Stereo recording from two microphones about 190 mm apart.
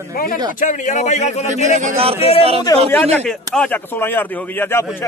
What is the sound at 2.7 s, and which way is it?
Speech, 20° left (ahead or behind).